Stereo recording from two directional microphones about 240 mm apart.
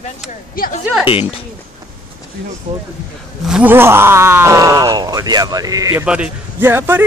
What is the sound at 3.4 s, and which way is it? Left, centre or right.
Speech, centre.